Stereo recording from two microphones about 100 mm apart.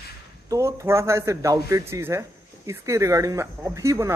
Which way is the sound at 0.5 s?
30° right (ahead or behind).